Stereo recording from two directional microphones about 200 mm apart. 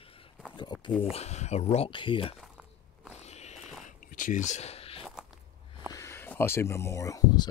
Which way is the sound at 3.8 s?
40° left (ahead or behind).